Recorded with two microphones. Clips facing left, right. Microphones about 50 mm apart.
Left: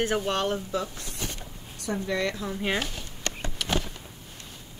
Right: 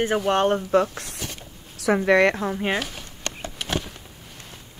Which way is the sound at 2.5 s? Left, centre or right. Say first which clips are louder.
Right 4 dB; right.